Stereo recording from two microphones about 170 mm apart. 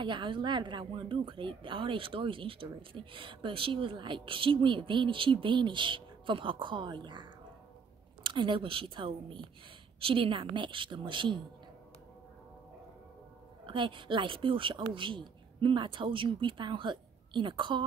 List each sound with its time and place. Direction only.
0.0 s a woman's voice: 30° right (ahead or behind)
13.7 s speech: 30° right (ahead or behind)